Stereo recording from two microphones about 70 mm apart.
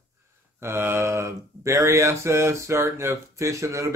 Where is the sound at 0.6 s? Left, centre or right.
Right.